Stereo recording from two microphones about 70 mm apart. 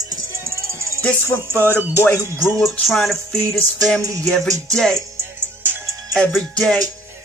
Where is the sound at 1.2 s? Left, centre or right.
Left.